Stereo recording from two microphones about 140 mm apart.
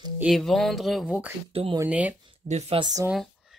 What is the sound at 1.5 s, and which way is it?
Speech, 40° right (ahead or behind).